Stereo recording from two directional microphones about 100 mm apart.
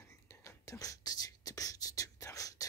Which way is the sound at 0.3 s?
35° left (ahead or behind).